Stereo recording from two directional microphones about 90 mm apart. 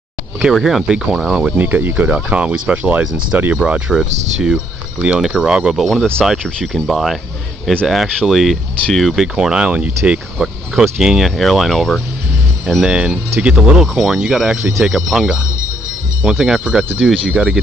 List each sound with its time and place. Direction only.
0.4 s speech: 5° right (ahead or behind)
1.6 s speech: 20° right (ahead or behind)
3.5 s speech: 10° right (ahead or behind)
12.9 s speech: 10° right (ahead or behind)